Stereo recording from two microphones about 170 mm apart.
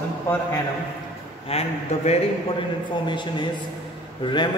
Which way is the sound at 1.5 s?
35° left (ahead or behind).